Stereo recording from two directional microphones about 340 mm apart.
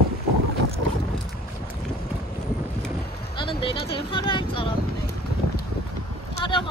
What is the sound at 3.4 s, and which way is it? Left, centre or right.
Vehicle, centre.